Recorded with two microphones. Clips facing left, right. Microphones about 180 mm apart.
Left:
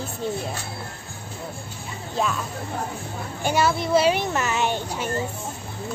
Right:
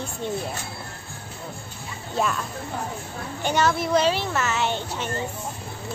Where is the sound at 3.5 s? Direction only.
10° left (ahead or behind).